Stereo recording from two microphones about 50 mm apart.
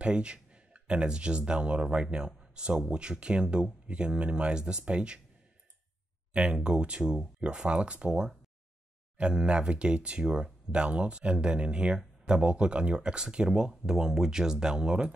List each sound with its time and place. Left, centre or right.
0.0 s speech: right
6.3 s speech: right